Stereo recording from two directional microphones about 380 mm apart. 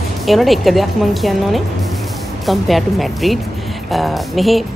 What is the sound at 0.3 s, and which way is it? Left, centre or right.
A woman's voice, centre.